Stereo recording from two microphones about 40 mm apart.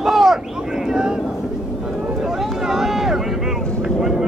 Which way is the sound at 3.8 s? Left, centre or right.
Centre.